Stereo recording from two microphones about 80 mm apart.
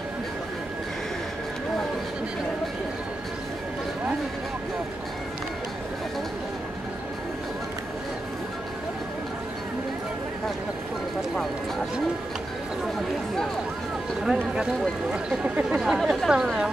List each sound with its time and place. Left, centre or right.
14.2 s speech: centre